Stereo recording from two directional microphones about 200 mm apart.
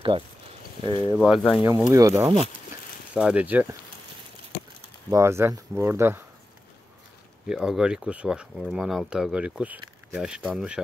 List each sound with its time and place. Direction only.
0.8 s speech: 25° right (ahead or behind)
1.1 s speech: 5° right (ahead or behind)
5.1 s speech: 15° right (ahead or behind)
7.4 s speech: 5° right (ahead or behind)